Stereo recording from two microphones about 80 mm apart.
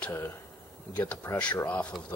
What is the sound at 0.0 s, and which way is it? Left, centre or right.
Speech, left.